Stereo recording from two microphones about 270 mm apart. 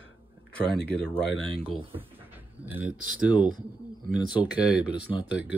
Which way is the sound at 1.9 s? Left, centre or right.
Centre.